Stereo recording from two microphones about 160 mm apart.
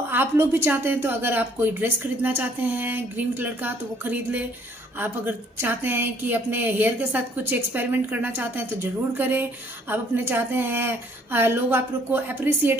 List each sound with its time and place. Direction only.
0.1 s speech: 15° right (ahead or behind)